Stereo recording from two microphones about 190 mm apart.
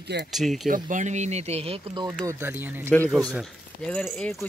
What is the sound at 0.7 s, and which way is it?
Speech, 45° right (ahead or behind).